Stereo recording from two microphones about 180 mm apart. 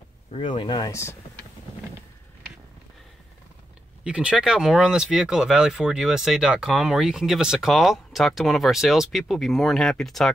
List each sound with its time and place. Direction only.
0.3 s speech: 30° left (ahead or behind)
4.0 s speech: 5° right (ahead or behind)